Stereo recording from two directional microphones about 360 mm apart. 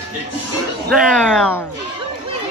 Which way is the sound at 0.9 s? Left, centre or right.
Centre.